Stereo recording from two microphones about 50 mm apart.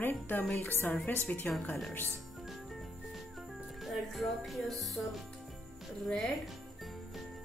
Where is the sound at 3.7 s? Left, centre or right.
Centre.